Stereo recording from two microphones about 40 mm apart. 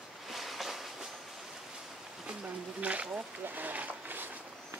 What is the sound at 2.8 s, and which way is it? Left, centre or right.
Speech, right.